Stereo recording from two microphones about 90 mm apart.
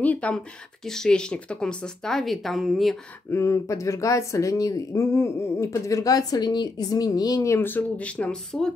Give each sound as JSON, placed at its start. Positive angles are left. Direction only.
{"t": 0.0, "sound": "speech", "side_deg": 15}
{"t": 0.8, "sound": "speech", "side_deg": 5}
{"t": 3.3, "sound": "speech", "side_deg": 35}
{"t": 7.5, "sound": "speech", "side_deg": 20}